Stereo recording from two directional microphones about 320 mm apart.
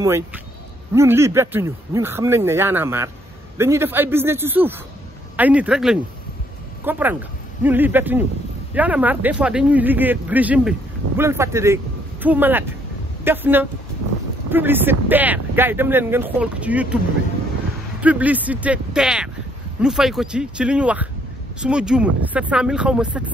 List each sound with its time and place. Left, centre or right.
0.0 s speech: centre
18.0 s speech: centre